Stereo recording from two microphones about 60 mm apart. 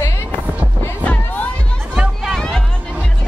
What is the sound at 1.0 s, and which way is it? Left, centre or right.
Music, left.